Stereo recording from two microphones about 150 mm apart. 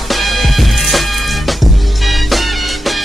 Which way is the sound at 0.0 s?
Centre (ahead or behind).